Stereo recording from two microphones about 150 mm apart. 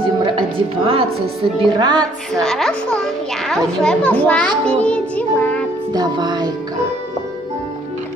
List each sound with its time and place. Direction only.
0.0 s music: 35° right (ahead or behind)
2.4 s a child's voice: centre (ahead or behind)
5.9 s music: 30° right (ahead or behind)